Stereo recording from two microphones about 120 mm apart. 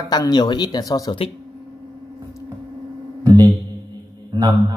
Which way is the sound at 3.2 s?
35° right (ahead or behind).